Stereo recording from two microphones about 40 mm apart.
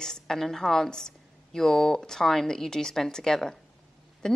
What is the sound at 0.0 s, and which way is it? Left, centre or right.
A woman's voice, centre.